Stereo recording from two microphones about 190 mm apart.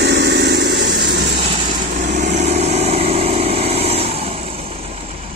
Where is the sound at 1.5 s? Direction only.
40° right (ahead or behind).